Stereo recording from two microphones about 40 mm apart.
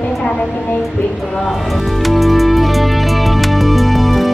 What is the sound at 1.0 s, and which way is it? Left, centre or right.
Speech, left.